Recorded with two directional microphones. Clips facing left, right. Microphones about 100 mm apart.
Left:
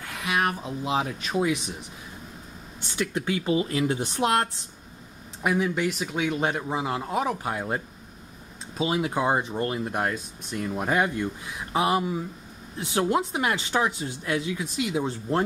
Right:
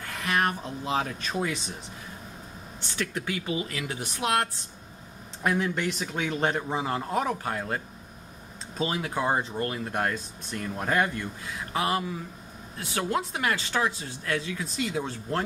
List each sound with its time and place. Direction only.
0.0 s speech: 5° left (ahead or behind)
3.0 s speech: 25° left (ahead or behind)
5.4 s speech: 5° left (ahead or behind)
9.6 s speech: 20° left (ahead or behind)
9.9 s speech: 5° left (ahead or behind)